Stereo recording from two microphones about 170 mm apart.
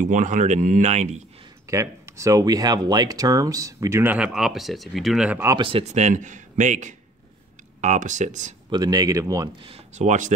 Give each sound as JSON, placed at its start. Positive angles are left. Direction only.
{"t": 0.0, "sound": "speech", "side_deg": -50}
{"t": 1.7, "sound": "speech", "side_deg": -15}
{"t": 5.6, "sound": "speech", "side_deg": -35}
{"t": 8.6, "sound": "speech", "side_deg": -25}
{"t": 9.7, "sound": "speech", "side_deg": -45}